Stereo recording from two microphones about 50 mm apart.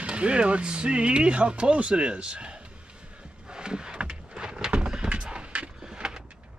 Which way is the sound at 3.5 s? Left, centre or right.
Centre.